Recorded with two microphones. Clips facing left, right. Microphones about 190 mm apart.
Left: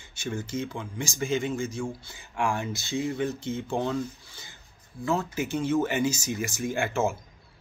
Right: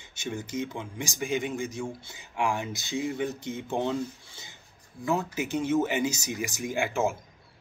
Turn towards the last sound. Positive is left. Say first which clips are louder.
# left 1 dB
turn(degrees=-15)  # may be behind; listen again after turning